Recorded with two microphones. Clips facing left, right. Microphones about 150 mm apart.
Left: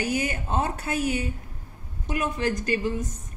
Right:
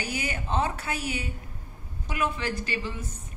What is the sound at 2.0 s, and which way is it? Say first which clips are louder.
A woman's voice: left 3 dB; 45° left (ahead or behind).